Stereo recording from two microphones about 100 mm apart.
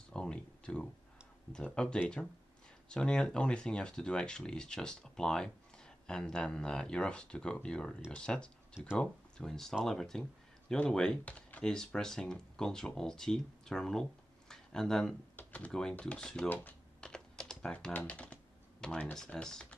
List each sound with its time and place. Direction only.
0.1 s a sound: 10° left (ahead or behind)
1.5 s speech: 10° left (ahead or behind)
14.5 s a sound: 5° left (ahead or behind)
15.3 s speech: 15° left (ahead or behind)
17.0 s typing: 5° left (ahead or behind)
19.1 s speech: 5° left (ahead or behind)